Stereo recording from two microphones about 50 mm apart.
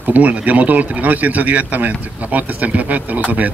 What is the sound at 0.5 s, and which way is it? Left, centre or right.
Speech, right.